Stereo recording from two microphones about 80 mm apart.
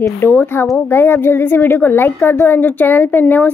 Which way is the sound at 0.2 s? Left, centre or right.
Left.